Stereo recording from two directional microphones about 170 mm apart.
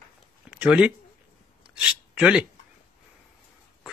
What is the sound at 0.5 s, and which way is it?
Speech, 5° right (ahead or behind).